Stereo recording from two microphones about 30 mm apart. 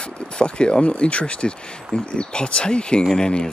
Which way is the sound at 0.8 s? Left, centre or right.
Left.